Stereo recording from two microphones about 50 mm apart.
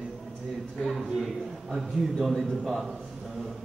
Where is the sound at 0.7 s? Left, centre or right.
Centre.